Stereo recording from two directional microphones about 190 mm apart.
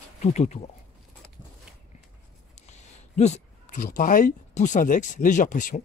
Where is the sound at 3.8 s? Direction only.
45° left (ahead or behind).